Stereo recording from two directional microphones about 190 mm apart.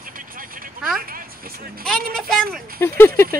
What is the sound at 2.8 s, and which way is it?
Speech, 15° left (ahead or behind).